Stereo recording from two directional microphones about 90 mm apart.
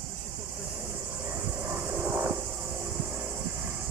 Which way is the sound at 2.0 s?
10° right (ahead or behind).